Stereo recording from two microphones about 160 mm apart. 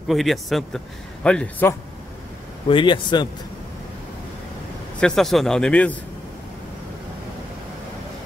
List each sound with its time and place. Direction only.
0.1 s a man's voice: centre (ahead or behind)
2.7 s a man's voice: 30° left (ahead or behind)
5.0 s a man's voice: centre (ahead or behind)